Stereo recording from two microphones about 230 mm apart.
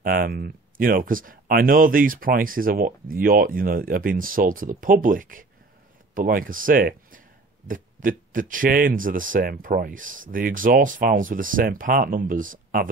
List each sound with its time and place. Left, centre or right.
0.0 s speech: right